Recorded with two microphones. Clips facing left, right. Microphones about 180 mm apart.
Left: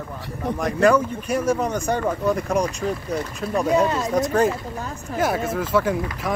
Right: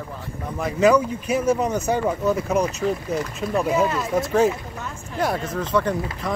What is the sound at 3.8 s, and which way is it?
Speech, 35° left (ahead or behind).